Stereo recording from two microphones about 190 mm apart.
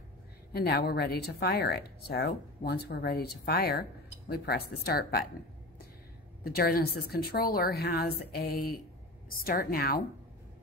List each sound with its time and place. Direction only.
0.5 s speech: 55° left (ahead or behind)
6.4 s a woman's voice: 50° left (ahead or behind)